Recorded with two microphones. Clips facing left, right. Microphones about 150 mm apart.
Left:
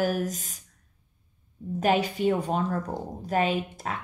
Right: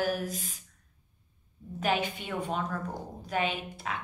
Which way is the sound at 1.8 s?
40° left (ahead or behind).